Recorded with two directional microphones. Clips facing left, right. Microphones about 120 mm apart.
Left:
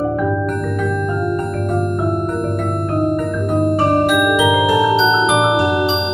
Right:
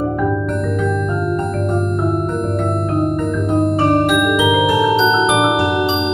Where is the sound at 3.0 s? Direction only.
Centre (ahead or behind).